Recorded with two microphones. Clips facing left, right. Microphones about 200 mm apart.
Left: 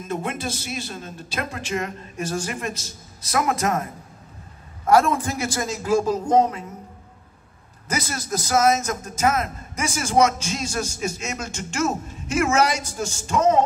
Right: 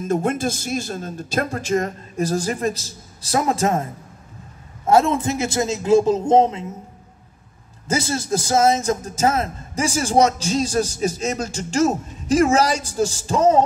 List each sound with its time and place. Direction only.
0.1 s a man's voice: 45° right (ahead or behind); by 3.8 s 30° right (ahead or behind)
4.8 s a man's voice: 25° right (ahead or behind)
7.9 s a man's voice: 30° right (ahead or behind)